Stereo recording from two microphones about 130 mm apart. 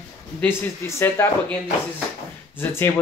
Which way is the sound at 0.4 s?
20° left (ahead or behind).